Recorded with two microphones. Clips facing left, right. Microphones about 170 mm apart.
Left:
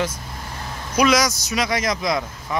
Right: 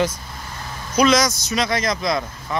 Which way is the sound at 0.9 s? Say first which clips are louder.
Right 1 dB; 10° left (ahead or behind).